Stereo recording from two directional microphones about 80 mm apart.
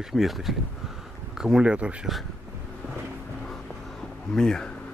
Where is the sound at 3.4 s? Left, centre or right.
Centre.